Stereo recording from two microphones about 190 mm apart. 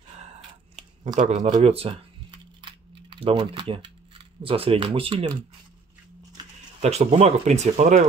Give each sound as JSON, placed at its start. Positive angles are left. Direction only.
{"t": 0.7, "sound": "a sound", "side_deg": -40}
{"t": 1.5, "sound": "speech", "side_deg": -30}
{"t": 2.6, "sound": "typing", "side_deg": -25}
{"t": 4.4, "sound": "speech", "side_deg": -30}
{"t": 6.8, "sound": "speech", "side_deg": -35}